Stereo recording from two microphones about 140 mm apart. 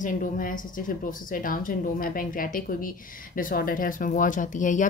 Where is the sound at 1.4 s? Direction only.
80° left.